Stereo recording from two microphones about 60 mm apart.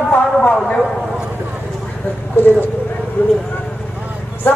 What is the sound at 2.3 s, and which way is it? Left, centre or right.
Speech, left.